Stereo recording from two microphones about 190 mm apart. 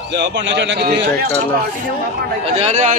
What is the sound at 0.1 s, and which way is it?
Speech, 65° right (ahead or behind).